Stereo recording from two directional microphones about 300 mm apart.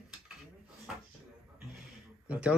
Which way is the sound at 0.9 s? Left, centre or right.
Centre.